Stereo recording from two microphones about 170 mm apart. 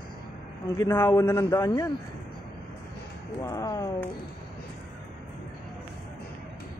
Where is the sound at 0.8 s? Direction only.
15° left (ahead or behind).